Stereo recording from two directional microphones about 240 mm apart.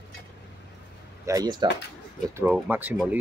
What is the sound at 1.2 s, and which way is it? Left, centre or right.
Speech, centre.